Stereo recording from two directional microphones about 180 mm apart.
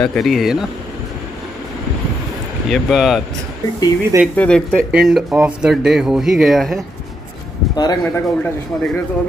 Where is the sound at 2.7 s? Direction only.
Centre (ahead or behind).